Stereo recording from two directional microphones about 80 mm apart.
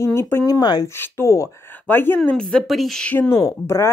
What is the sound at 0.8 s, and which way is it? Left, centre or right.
Speech, left.